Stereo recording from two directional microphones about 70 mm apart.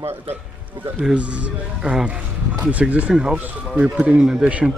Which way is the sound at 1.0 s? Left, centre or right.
Centre.